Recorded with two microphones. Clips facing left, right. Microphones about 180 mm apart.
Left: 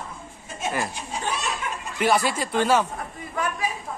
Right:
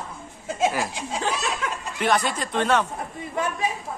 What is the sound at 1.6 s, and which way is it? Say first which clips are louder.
Snicker: right 2 dB; 90° right.